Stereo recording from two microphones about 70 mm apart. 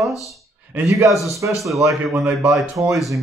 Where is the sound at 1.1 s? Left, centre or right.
Centre.